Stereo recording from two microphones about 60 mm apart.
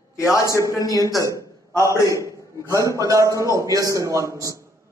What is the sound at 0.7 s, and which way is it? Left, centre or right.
Speech, left.